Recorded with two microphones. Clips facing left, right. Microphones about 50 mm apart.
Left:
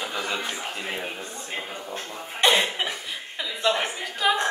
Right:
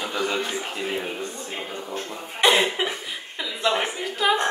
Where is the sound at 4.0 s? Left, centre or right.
Centre.